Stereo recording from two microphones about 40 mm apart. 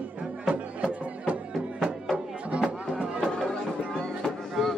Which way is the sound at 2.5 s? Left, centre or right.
Right.